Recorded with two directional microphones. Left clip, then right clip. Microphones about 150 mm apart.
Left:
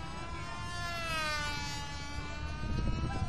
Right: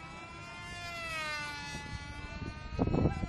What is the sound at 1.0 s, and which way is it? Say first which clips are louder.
Siren: left 2 dB; 10° right (ahead or behind).